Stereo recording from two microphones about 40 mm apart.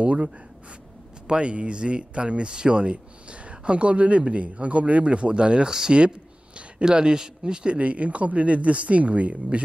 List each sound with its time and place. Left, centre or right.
0.0 s speech: right
5.8 s a sound: right
6.8 s a man's voice: centre